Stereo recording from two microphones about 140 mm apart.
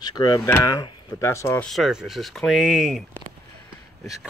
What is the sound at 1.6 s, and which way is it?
Speech, centre (ahead or behind).